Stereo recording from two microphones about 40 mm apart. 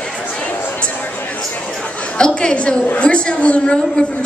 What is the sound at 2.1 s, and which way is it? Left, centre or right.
A woman's voice, left.